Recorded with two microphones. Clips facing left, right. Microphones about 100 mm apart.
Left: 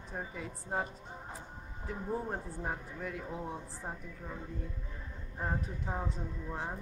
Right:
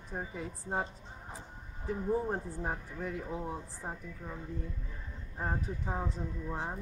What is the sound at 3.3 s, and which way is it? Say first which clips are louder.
Speech: right 2 dB; 5° right (ahead or behind).